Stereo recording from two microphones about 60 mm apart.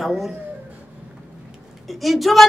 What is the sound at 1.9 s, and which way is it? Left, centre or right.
Speech, centre.